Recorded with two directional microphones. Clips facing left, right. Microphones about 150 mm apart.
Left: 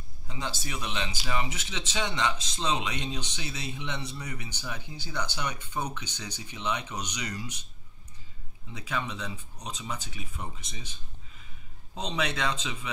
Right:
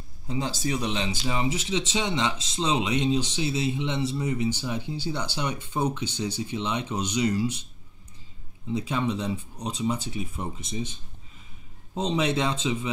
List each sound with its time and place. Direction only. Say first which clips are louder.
0.3 s speech: right 8 dB; 30° right (ahead or behind)
8.7 s speech: right 7 dB; 30° right (ahead or behind)